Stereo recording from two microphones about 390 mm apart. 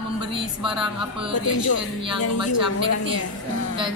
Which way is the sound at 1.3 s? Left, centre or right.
Left.